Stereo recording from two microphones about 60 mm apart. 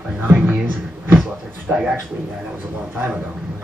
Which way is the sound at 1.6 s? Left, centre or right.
Centre.